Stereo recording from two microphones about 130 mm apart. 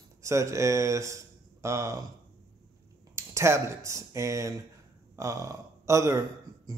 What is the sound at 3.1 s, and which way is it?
Speech, 20° right (ahead or behind).